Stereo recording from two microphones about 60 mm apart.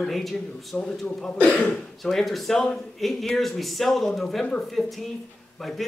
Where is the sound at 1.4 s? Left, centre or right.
Centre.